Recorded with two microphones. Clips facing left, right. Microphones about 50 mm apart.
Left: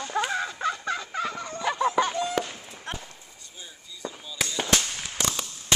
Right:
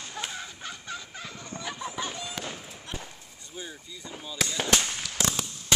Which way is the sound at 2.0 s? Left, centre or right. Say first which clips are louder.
Left 9 dB; left.